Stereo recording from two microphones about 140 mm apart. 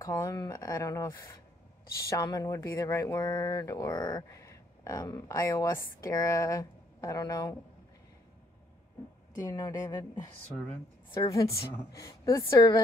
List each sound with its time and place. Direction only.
0.1 s speech: 25° left (ahead or behind)
9.3 s speech: 25° left (ahead or behind)
11.1 s speech: 25° left (ahead or behind)